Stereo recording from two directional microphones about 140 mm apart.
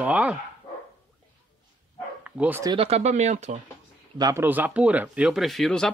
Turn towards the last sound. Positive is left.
turn(degrees=5)  # may be behind; listen again after turning